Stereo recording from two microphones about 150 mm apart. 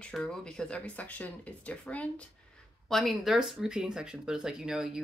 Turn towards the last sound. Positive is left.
turn(degrees=-5)  # may be behind; listen again after turning